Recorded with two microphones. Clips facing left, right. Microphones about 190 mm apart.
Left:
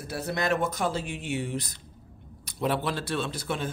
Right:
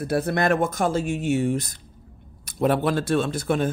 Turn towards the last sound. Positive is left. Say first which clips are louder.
# right 8 dB
turn(degrees=-50)  # may be behind; listen again after turning